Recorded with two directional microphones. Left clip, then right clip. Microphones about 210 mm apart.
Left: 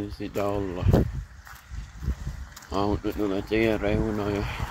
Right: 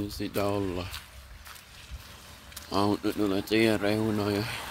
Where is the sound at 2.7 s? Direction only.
30° right (ahead or behind).